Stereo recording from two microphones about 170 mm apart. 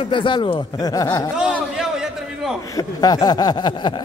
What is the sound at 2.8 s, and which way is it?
A man's voice, 20° left (ahead or behind).